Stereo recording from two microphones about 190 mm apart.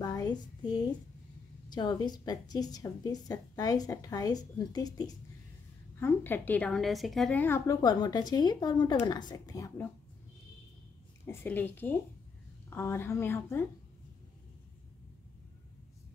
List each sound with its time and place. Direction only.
0.0 s a sound: 20° left (ahead or behind)
1.7 s a woman's voice: 20° left (ahead or behind)
11.2 s a woman's voice: 10° left (ahead or behind)